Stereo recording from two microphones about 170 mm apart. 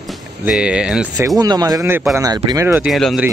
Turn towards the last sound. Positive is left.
turn(degrees=0)  # may be behind; listen again after turning